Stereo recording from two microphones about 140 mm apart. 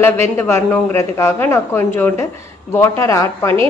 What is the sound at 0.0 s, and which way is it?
A woman's voice, 20° left (ahead or behind).